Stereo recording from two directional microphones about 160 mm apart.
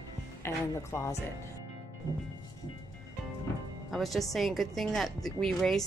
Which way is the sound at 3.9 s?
Centre (ahead or behind).